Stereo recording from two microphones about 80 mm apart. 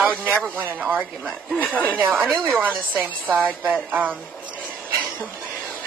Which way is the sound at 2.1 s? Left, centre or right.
Right.